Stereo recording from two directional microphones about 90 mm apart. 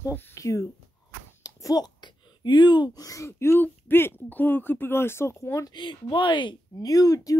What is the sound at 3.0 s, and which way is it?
Speech, 35° left (ahead or behind).